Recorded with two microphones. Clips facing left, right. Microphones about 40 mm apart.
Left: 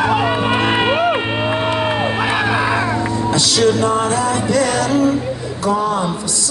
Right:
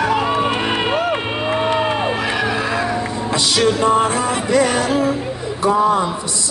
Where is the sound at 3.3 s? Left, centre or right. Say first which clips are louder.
Left 1 dB; right.